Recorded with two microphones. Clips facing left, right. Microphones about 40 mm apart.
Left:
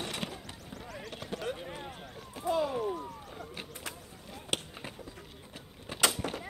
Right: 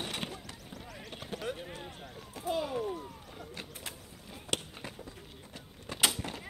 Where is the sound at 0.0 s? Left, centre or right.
Centre.